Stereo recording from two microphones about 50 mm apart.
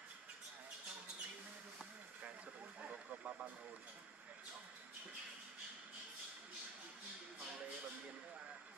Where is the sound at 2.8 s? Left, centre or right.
Right.